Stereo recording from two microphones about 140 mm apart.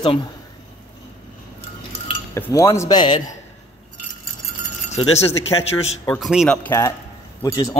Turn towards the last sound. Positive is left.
turn(degrees=25)  # may be behind; listen again after turning